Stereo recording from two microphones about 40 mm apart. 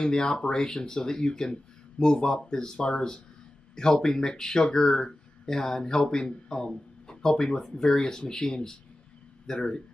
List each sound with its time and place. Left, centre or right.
0.0 s speech: centre